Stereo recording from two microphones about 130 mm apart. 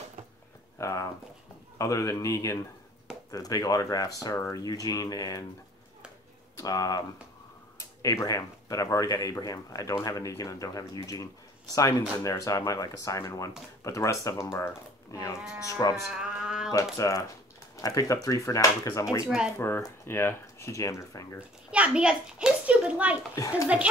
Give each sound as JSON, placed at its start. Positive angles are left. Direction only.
{"t": 0.7, "sound": "speech", "side_deg": 25}
{"t": 6.5, "sound": "speech", "side_deg": 30}
{"t": 8.0, "sound": "speech", "side_deg": 25}
{"t": 16.1, "sound": "a sound", "side_deg": -5}
{"t": 16.7, "sound": "speech", "side_deg": 25}
{"t": 19.2, "sound": "a child's voice", "side_deg": -5}
{"t": 19.6, "sound": "speech", "side_deg": 20}
{"t": 21.4, "sound": "a child's voice", "side_deg": -10}